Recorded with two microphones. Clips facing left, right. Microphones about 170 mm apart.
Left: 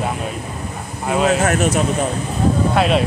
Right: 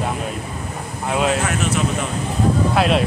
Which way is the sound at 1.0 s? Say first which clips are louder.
Left 3 dB; centre (ahead or behind).